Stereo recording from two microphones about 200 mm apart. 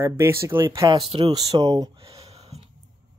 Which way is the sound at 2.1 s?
30° right (ahead or behind).